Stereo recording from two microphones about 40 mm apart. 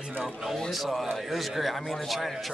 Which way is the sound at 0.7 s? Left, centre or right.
Centre.